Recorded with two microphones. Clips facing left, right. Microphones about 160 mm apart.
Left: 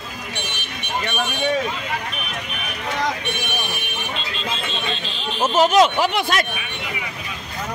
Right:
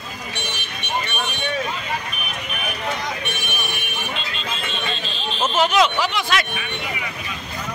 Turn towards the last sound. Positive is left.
turn(degrees=50)  # may be behind; listen again after turning